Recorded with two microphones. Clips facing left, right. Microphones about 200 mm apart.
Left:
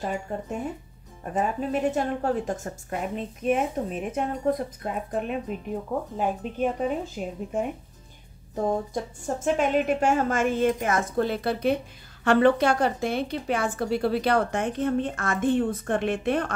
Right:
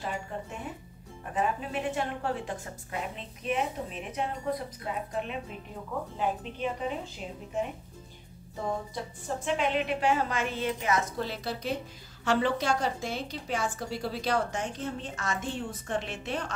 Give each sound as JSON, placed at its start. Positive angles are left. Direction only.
{"t": 0.0, "sound": "a woman's voice", "side_deg": 45}